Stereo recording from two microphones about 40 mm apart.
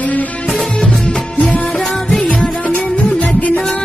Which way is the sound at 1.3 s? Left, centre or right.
Left.